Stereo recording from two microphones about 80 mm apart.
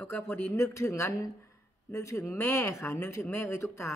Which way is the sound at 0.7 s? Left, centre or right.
Left.